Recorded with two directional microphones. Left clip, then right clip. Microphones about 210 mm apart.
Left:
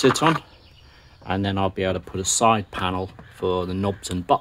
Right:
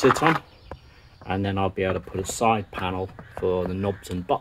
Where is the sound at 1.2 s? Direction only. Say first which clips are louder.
Left 2 dB; 20° left (ahead or behind).